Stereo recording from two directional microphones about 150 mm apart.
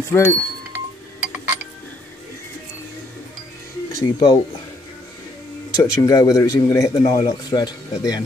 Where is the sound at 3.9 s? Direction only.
20° left (ahead or behind).